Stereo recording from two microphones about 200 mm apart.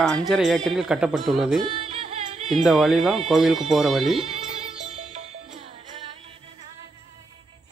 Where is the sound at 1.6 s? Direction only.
35° right (ahead or behind).